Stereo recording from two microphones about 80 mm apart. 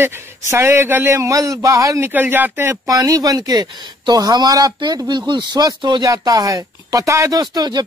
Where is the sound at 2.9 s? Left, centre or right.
Right.